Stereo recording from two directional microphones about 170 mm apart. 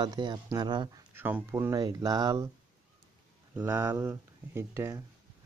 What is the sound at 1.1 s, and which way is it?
Speech, 10° right (ahead or behind).